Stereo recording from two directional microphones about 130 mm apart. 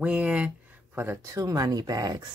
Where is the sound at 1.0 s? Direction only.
20° right (ahead or behind).